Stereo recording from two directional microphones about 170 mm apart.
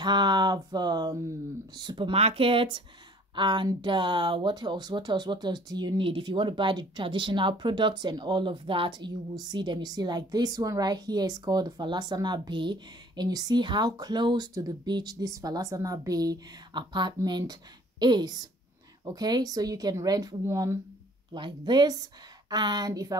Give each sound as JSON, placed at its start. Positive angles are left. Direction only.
{"t": 0.0, "sound": "speech", "side_deg": -25}